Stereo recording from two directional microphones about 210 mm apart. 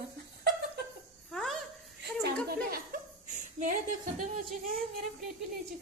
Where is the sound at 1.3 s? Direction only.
Centre (ahead or behind).